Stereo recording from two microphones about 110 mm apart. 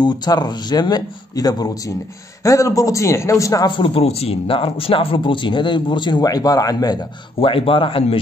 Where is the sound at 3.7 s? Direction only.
55° left (ahead or behind); by 7.1 s 35° left (ahead or behind).